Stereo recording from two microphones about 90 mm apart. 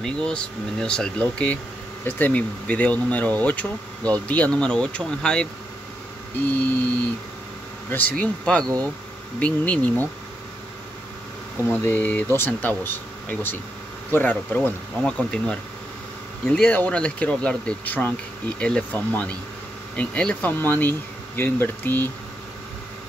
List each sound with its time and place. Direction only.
0.0 s speech: 10° left (ahead or behind)
7.9 s speech: 15° left (ahead or behind)
11.7 s speech: 20° left (ahead or behind)